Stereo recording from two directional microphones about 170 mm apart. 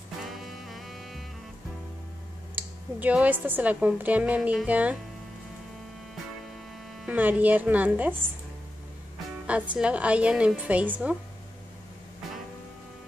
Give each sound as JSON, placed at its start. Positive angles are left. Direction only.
{"t": 0.2, "sound": "music", "side_deg": 0}
{"t": 2.5, "sound": "a woman's voice", "side_deg": -10}
{"t": 7.1, "sound": "a woman's voice", "side_deg": -10}
{"t": 9.5, "sound": "a woman's voice", "side_deg": -5}